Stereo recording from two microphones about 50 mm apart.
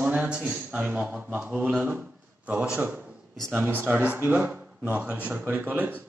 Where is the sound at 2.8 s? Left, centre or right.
Right.